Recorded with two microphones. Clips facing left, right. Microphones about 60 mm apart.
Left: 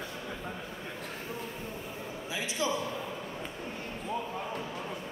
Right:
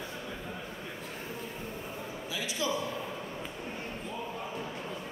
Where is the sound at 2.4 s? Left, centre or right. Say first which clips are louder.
Left 1 dB; left.